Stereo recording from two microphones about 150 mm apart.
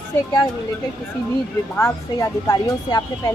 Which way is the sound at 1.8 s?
20° left (ahead or behind).